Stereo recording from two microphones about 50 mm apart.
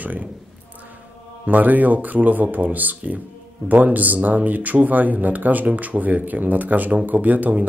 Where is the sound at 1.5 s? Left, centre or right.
Right.